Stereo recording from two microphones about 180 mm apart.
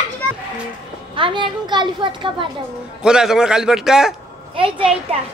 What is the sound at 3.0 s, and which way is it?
A man's voice, 5° right (ahead or behind).